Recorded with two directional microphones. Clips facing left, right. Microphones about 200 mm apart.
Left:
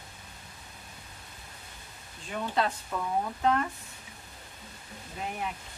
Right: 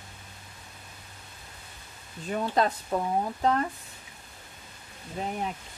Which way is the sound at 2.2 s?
40° right (ahead or behind).